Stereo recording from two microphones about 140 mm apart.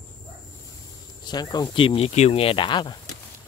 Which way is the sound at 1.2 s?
30° left (ahead or behind).